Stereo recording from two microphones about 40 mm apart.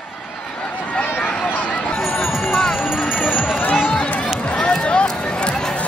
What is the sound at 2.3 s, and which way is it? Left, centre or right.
Music, centre.